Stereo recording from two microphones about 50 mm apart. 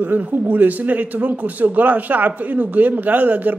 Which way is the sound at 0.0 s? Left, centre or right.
Right.